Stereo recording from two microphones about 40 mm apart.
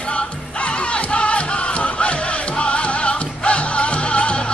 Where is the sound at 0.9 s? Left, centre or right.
Left.